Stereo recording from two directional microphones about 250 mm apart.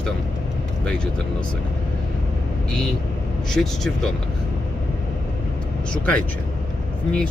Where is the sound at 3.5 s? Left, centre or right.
Centre.